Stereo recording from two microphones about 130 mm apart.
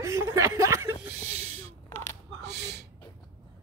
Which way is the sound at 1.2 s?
55° right (ahead or behind).